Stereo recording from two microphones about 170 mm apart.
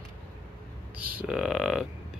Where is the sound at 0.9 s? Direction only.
10° right (ahead or behind).